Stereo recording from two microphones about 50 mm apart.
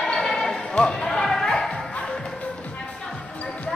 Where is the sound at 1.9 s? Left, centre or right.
Left.